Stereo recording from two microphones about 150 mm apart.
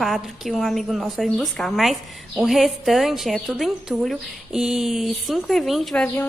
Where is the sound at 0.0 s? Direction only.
Centre (ahead or behind).